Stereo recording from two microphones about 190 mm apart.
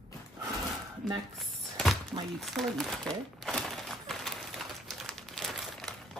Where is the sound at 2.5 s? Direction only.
Centre (ahead or behind).